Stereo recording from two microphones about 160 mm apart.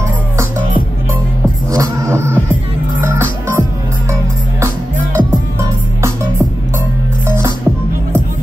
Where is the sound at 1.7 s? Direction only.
20° right (ahead or behind).